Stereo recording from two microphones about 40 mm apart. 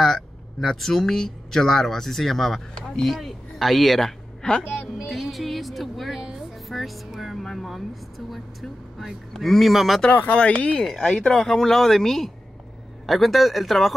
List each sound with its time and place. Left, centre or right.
0.0 s speech: centre
4.4 s speech: centre
5.0 s speech: centre
6.1 s speech: centre
10.3 s speech: left
10.8 s speech: centre